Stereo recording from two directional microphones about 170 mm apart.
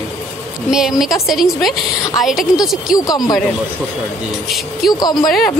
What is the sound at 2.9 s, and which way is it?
Speech, 20° left (ahead or behind).